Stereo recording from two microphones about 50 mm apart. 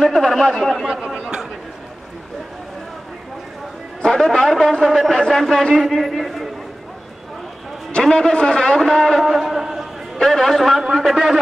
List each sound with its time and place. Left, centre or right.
0.0 s a man's voice: centre
0.7 s a man's voice: centre
1.0 s speech: right
4.0 s a man's voice: centre
8.0 s a man's voice: centre
10.1 s a man's voice: centre